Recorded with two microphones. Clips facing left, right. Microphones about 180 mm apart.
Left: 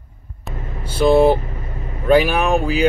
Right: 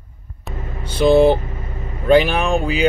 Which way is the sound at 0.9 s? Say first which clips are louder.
Right 1 dB; 5° left (ahead or behind).